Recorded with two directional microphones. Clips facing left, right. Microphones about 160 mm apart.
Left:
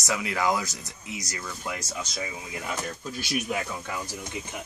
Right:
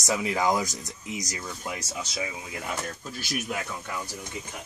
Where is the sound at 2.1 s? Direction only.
5° right (ahead or behind).